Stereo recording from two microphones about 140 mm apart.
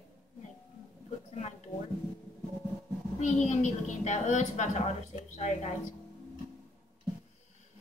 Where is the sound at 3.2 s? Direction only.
55° left (ahead or behind).